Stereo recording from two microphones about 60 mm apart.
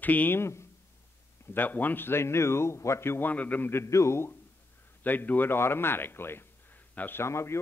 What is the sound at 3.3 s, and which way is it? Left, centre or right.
Speech, left.